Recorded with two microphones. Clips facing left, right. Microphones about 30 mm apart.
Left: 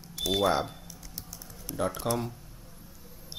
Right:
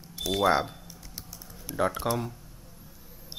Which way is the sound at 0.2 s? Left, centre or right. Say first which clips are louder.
Right 2 dB; centre.